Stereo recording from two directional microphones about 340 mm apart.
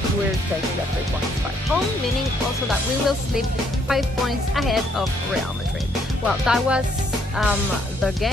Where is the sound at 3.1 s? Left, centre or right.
Centre.